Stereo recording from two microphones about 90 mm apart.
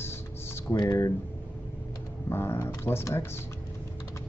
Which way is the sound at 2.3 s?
30° left (ahead or behind).